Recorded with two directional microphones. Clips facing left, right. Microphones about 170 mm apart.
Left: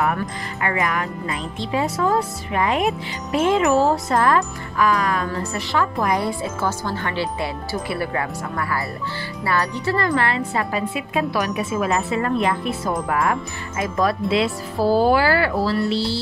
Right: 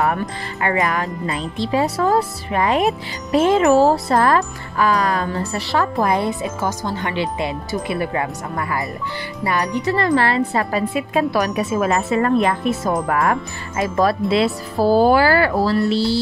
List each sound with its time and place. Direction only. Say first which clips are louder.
0.6 s speech: right 3 dB; 35° right (ahead or behind)
6.1 s speech: right 2 dB; 20° right (ahead or behind); by 13.4 s 45° right (ahead or behind)
13.7 s speech: right 3 dB; 35° right (ahead or behind)